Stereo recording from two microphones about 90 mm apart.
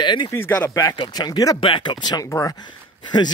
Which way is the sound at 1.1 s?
50° left (ahead or behind).